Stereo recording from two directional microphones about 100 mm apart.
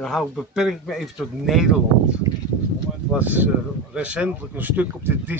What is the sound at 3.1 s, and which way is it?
Speech, 15° right (ahead or behind).